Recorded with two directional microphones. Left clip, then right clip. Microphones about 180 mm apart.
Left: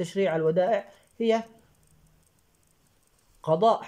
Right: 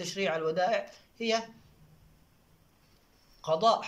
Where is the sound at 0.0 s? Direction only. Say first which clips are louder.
Left 6 dB; 40° left (ahead or behind).